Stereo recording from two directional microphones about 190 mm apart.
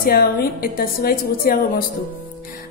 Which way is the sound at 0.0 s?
50° left (ahead or behind).